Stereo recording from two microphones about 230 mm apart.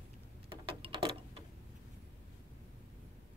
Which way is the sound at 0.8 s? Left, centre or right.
Right.